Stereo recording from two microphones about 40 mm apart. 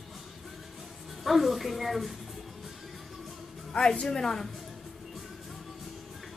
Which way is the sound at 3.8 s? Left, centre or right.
Centre.